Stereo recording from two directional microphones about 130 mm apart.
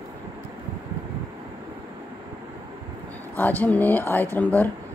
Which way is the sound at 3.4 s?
15° left (ahead or behind).